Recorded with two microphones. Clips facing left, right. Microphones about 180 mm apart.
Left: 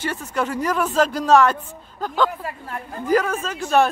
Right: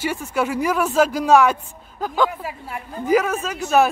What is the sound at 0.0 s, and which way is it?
Speech, 10° right (ahead or behind).